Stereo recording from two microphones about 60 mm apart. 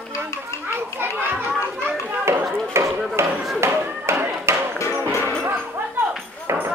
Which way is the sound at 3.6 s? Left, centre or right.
Right.